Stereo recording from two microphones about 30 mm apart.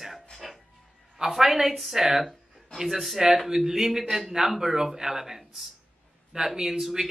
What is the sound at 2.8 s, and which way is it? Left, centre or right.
Speech, centre.